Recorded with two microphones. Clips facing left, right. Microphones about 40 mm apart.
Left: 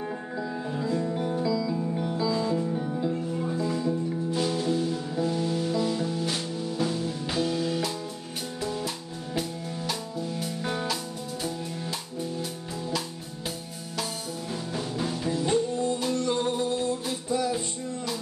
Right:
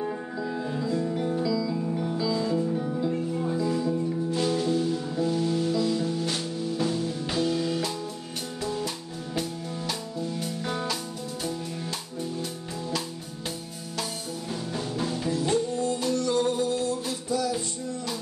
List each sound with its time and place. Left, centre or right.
0.7 s music: centre
6.1 s music: centre
15.0 s music: centre
15.3 s music: centre